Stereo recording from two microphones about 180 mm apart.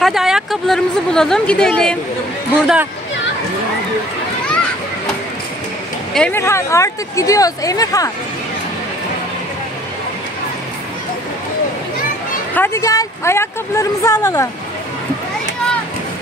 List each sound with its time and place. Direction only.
0.0 s speech: centre (ahead or behind)
6.1 s speech: 10° left (ahead or behind)
12.5 s speech: 15° left (ahead or behind)